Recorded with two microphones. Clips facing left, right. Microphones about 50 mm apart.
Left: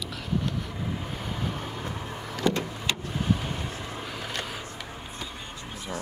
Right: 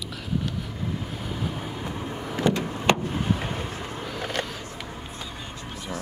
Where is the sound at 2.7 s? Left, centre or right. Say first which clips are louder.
Right 8 dB; right.